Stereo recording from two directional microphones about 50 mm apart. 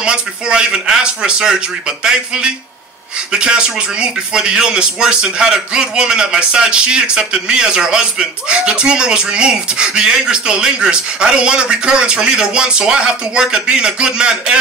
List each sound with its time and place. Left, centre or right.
0.0 s speech: centre